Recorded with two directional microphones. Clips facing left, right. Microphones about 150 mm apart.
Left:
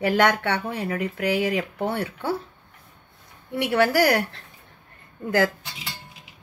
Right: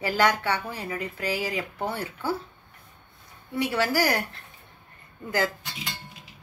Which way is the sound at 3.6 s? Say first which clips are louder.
Left 6 dB; 60° left (ahead or behind).